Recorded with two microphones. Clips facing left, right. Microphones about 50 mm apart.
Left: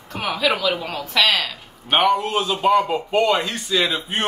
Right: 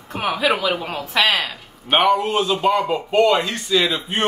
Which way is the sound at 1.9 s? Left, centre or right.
Centre.